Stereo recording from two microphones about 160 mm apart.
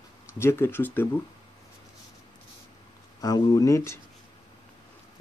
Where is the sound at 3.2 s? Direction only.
25° left (ahead or behind).